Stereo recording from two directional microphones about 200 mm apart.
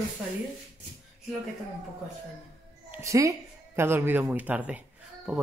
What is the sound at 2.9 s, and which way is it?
A woman's voice, 15° right (ahead or behind).